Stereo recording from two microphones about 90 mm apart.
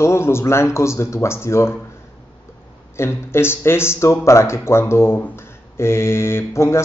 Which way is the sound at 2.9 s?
30° left (ahead or behind).